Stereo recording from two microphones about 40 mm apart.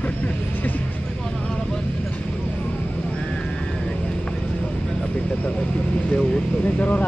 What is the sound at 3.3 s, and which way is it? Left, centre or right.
Vehicle, centre.